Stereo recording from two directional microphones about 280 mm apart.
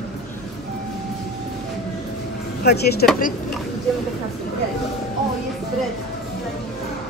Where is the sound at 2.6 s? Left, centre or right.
Left.